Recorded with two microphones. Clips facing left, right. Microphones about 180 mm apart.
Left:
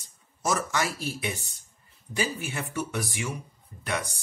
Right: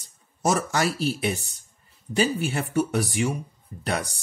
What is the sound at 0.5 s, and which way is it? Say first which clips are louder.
Speech: right 4 dB; 35° right (ahead or behind).